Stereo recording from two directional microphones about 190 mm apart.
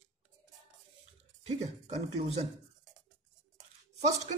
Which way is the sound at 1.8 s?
35° right (ahead or behind).